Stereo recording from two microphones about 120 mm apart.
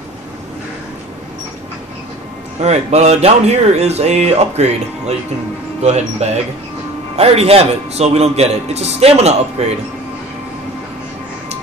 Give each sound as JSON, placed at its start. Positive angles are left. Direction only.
{"t": 2.6, "sound": "a man's voice", "side_deg": -65}